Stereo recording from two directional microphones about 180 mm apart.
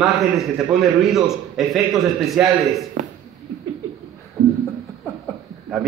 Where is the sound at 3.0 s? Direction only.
45° right (ahead or behind).